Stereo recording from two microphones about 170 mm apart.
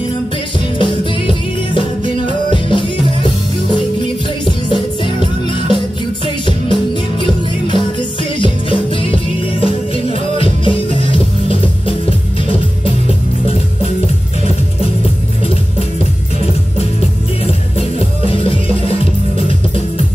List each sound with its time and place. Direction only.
0.7 s music: 30° left (ahead or behind)
17.5 s music: 35° left (ahead or behind)